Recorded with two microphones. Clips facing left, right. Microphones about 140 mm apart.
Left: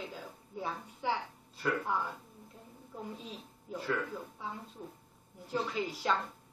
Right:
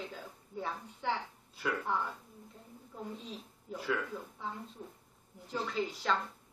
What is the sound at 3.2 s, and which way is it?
A woman's voice, centre (ahead or behind).